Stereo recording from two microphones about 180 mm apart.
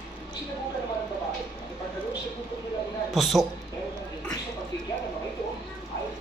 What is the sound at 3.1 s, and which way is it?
Speech, centre (ahead or behind).